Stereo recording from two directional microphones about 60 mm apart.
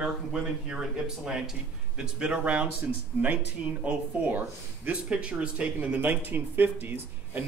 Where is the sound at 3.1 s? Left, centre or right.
Right.